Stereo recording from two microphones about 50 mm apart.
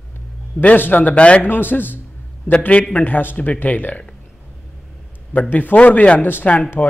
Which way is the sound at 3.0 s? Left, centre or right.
Left.